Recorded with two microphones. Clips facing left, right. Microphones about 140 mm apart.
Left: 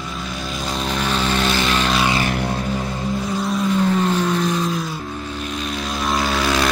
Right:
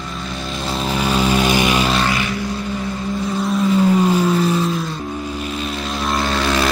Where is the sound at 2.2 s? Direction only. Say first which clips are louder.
Left 1 dB; 60° left (ahead or behind).